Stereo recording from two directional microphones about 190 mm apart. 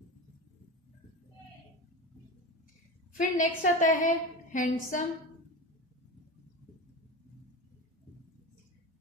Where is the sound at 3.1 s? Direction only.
40° left (ahead or behind).